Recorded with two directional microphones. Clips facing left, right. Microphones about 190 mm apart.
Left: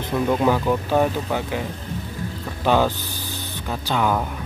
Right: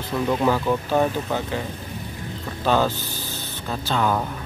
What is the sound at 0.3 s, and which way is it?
Speech, 10° left (ahead or behind).